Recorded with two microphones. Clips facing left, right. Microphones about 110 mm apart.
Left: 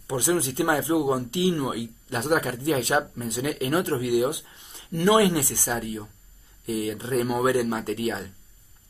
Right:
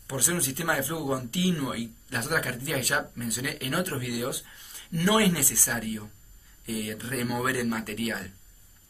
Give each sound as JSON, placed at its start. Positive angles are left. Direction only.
{"t": 0.0, "sound": "speech", "side_deg": 20}